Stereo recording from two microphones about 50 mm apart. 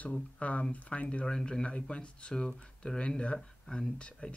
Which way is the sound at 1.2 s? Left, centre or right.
Centre.